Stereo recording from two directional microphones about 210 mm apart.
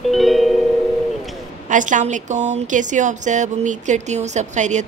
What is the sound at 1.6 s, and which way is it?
Speech, 35° right (ahead or behind).